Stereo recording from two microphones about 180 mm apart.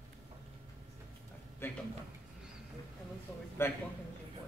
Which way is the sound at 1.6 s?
15° left (ahead or behind).